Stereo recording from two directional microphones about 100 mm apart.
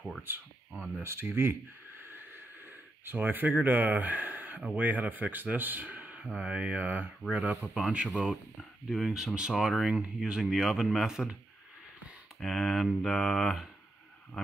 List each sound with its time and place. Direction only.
0.7 s a man's voice: 5° right (ahead or behind)
1.0 s speech: 25° right (ahead or behind)
3.1 s speech: 20° right (ahead or behind)
7.3 s a man's voice: centre (ahead or behind)
12.4 s a man's voice: centre (ahead or behind)